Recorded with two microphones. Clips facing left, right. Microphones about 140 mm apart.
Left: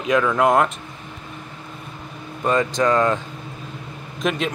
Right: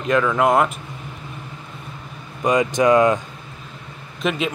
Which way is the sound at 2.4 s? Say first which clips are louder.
Right 2 dB; 10° right (ahead or behind).